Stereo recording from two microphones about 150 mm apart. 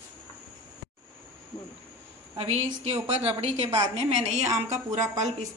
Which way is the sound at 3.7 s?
20° right (ahead or behind).